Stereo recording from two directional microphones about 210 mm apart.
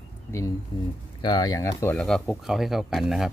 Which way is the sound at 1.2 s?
20° left (ahead or behind).